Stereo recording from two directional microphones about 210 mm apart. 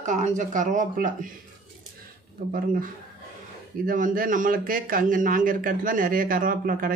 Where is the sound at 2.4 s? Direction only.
45° right (ahead or behind).